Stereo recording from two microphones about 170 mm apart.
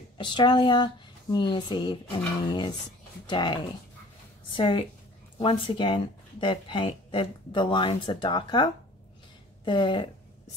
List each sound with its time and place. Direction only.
0.2 s speech: 30° left (ahead or behind)
4.6 s speech: 30° left (ahead or behind)